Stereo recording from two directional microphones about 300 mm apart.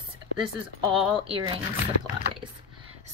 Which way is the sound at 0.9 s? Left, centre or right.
Centre.